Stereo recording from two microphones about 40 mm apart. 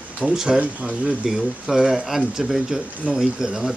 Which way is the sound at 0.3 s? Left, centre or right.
Centre.